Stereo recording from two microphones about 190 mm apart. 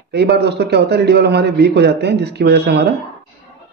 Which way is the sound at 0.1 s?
60° right (ahead or behind).